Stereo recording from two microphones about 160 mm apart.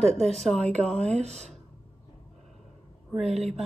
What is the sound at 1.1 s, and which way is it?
Speech, 45° right (ahead or behind).